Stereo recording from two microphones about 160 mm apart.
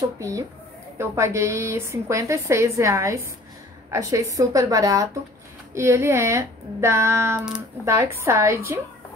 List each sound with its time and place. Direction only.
0.2 s a woman's voice: 20° right (ahead or behind)